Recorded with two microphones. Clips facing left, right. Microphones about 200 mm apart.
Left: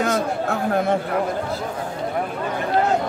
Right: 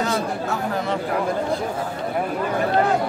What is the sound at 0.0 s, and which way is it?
Chatter, 55° left (ahead or behind).